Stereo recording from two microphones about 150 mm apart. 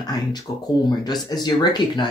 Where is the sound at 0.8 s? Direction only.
30° left (ahead or behind).